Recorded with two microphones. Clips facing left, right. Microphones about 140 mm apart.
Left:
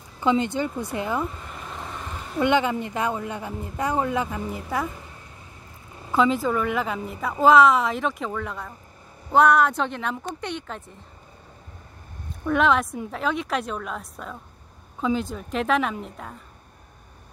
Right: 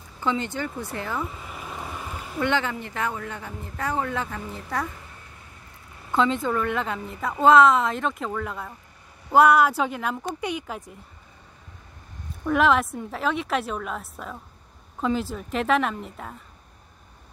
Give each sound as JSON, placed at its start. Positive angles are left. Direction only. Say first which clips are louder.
{"t": 0.2, "sound": "speech", "louder": "left 5 dB", "side_deg": 15}
{"t": 1.2, "sound": "a sound", "louder": "left 2 dB", "side_deg": -5}
{"t": 2.3, "sound": "speech", "louder": "left 4 dB", "side_deg": 15}
{"t": 6.1, "sound": "a woman's voice", "louder": "left 2 dB", "side_deg": 5}
{"t": 12.4, "sound": "a woman's voice", "louder": "even", "side_deg": 0}